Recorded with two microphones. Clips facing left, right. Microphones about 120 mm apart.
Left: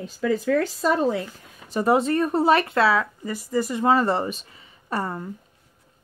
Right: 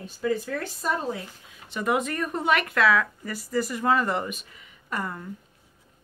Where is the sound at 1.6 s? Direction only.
35° left (ahead or behind).